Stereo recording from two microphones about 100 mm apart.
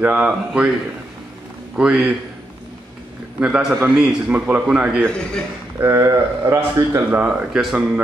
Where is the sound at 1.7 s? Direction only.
5° right (ahead or behind).